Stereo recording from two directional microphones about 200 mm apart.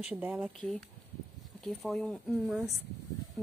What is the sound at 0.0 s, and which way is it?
A woman's voice, 5° right (ahead or behind).